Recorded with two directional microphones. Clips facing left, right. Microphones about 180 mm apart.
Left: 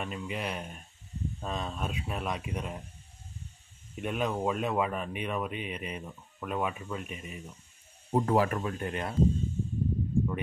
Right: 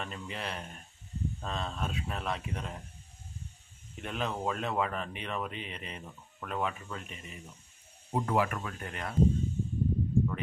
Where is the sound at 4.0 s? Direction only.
15° left (ahead or behind).